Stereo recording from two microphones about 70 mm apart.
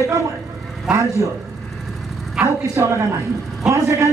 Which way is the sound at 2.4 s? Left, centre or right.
Centre.